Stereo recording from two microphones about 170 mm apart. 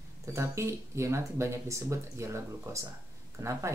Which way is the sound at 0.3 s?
15° right (ahead or behind).